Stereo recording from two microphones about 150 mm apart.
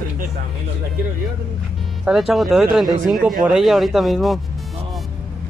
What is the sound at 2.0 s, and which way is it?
Speech, centre (ahead or behind).